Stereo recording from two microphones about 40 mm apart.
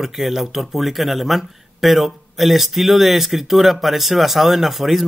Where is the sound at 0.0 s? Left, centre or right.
Centre.